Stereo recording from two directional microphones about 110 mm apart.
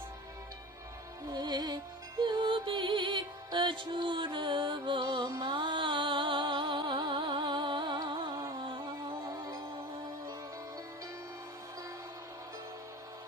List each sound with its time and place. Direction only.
1.3 s music: 40° right (ahead or behind)